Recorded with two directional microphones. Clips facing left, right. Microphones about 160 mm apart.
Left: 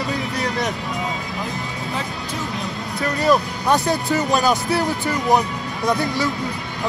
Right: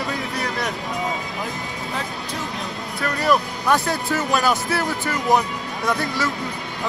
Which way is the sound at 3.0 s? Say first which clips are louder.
Left 2 dB; 20° left (ahead or behind).